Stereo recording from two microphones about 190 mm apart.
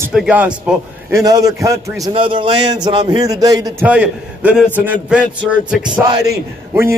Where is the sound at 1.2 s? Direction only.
20° right (ahead or behind).